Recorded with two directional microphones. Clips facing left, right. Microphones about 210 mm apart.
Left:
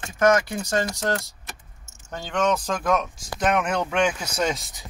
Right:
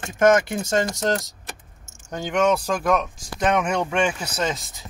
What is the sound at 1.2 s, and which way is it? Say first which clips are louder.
Keys jangling: right 3 dB; 45° right (ahead or behind).